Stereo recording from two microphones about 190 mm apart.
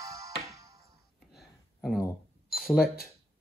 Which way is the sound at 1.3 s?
Centre (ahead or behind).